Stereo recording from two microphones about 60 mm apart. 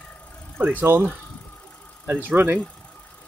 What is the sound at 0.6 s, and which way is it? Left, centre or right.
Speech, right.